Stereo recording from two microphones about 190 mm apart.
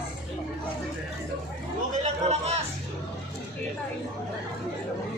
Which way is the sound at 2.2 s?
35° right (ahead or behind).